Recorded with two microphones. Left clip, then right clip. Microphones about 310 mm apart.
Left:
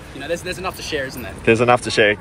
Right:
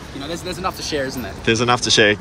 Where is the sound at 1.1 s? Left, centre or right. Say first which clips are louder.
Left 7 dB; centre.